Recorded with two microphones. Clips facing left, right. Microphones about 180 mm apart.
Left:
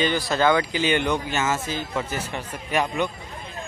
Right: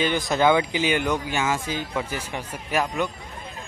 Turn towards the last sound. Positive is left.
turn(degrees=-5)  # may be behind; listen again after turning